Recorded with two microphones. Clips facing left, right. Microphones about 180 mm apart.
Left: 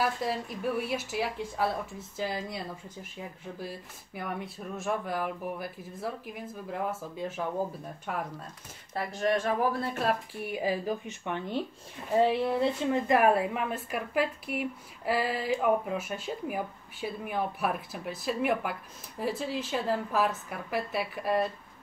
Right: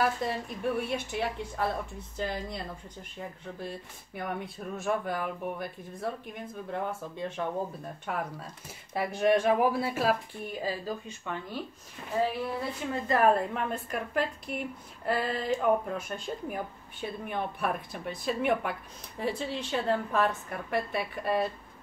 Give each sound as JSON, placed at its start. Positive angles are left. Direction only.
{"t": 0.0, "sound": "a woman's voice", "side_deg": 0}
{"t": 8.9, "sound": "speech", "side_deg": -15}
{"t": 10.4, "sound": "speech", "side_deg": 15}
{"t": 12.6, "sound": "a woman's voice", "side_deg": 20}